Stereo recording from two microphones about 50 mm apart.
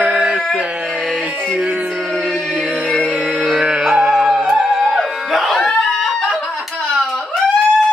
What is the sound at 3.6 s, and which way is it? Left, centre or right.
Music, centre.